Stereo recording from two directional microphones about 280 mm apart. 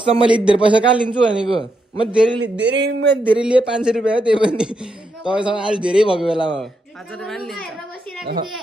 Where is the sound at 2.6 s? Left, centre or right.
Right.